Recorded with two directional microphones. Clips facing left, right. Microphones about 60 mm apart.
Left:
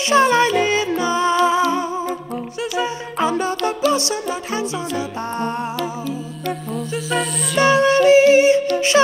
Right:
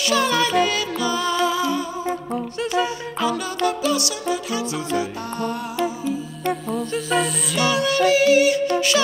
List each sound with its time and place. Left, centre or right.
0.1 s music: left
6.9 s music: centre
7.5 s music: left